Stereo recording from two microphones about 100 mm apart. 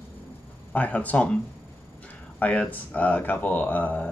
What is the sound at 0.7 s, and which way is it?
Speech, 15° left (ahead or behind).